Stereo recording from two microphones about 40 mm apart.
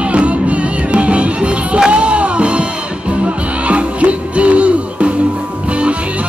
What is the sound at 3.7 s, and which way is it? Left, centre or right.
Music, right.